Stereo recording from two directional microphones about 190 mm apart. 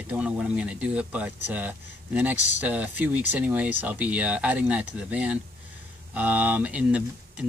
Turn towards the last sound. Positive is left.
turn(degrees=-5)  # may be behind; listen again after turning